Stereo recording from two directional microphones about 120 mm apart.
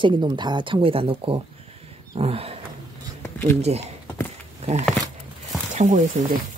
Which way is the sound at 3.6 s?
65° right (ahead or behind).